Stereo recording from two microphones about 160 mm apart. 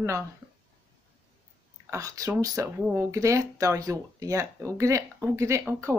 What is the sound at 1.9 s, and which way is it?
Speech, 20° right (ahead or behind).